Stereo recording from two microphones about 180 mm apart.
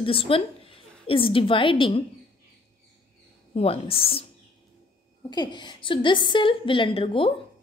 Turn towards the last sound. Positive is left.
turn(degrees=30)  # may be behind; listen again after turning